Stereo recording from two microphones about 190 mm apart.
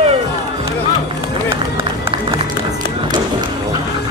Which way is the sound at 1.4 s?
15° right (ahead or behind).